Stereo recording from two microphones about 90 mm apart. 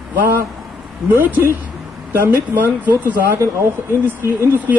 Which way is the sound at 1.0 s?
25° right (ahead or behind).